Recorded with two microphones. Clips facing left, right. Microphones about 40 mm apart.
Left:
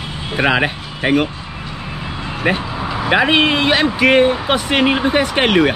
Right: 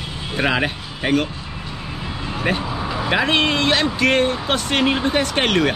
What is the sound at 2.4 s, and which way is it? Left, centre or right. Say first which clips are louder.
Speech: left 4 dB; centre.